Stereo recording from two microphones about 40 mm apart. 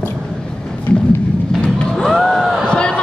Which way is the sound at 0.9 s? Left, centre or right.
Left.